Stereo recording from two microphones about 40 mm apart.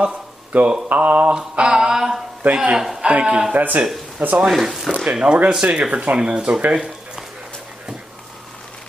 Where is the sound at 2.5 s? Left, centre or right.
Right.